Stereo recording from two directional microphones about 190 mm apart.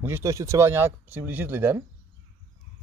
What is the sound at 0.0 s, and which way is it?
Speech, 15° right (ahead or behind).